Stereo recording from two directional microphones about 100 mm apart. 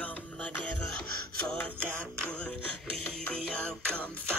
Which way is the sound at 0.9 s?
15° left (ahead or behind).